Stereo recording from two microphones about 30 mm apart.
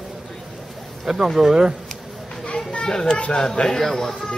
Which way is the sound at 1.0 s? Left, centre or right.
Centre.